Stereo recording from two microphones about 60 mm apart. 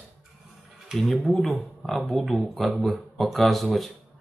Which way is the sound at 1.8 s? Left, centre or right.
Centre.